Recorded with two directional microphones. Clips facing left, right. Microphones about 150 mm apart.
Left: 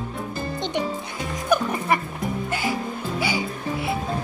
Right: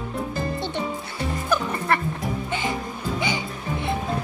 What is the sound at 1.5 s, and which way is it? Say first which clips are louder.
Music: left 3 dB; 10° left (ahead or behind).